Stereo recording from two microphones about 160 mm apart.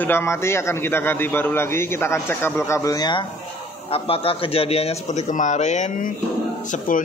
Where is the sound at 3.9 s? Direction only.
35° left (ahead or behind).